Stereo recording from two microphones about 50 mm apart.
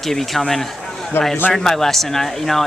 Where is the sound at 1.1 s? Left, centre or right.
Left.